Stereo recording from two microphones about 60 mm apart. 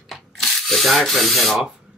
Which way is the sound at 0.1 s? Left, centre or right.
Centre.